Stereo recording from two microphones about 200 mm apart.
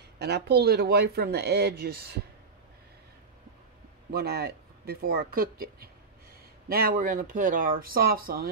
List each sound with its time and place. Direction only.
0.2 s speech: 55° right (ahead or behind)
4.1 s speech: 50° right (ahead or behind)